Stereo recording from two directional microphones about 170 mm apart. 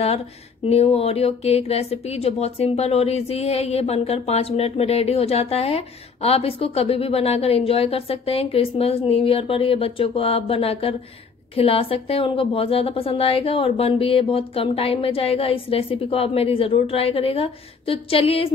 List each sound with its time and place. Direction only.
0.7 s speech: 35° left (ahead or behind)